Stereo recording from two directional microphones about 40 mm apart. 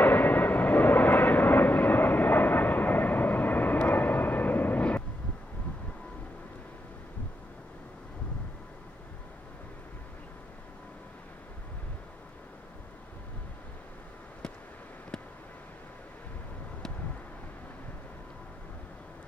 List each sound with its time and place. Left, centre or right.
0.0 s vehicle: left